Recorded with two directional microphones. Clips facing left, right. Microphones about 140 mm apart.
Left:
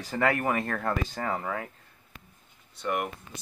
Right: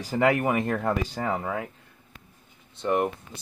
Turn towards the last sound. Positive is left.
turn(degrees=-30)  # may be behind; listen again after turning